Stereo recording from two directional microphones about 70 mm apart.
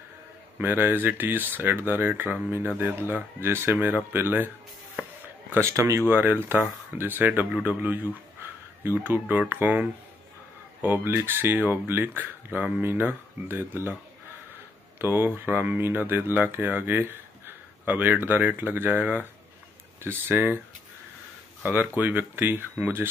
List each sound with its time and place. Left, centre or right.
0.6 s speech: right
3.7 s speech: centre
5.0 s a sound: right
5.5 s speech: right
15.0 s speech: right
21.6 s speech: right